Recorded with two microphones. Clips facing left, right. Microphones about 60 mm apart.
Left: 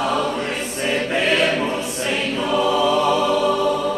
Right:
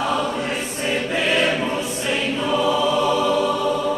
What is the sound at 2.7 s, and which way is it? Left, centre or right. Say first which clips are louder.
Choir: left 3 dB; left.